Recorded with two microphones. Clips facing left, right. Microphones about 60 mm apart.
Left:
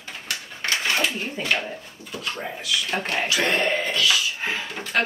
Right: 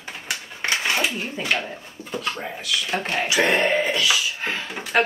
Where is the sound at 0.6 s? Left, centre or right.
Centre.